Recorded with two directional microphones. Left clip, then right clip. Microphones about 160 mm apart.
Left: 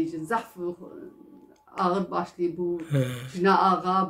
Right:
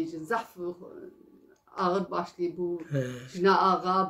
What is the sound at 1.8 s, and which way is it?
Speech, 20° right (ahead or behind).